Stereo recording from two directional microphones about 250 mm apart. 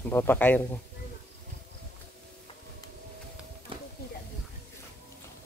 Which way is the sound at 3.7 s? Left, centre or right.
Right.